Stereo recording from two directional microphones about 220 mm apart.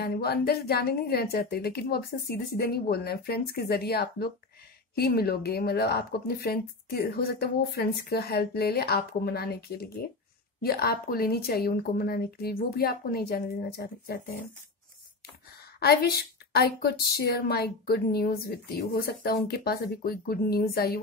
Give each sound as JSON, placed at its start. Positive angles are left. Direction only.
{"t": 0.0, "sound": "a woman's voice", "side_deg": 45}
{"t": 15.8, "sound": "a woman's voice", "side_deg": 45}